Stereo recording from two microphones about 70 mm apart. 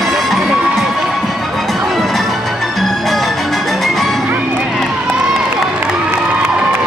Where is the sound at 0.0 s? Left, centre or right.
Centre.